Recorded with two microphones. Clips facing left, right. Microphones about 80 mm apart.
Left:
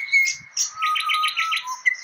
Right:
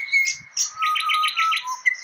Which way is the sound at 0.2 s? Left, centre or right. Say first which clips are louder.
Left 1 dB; centre.